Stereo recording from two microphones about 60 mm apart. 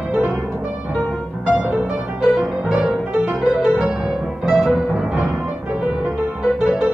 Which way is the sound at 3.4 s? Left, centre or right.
Centre.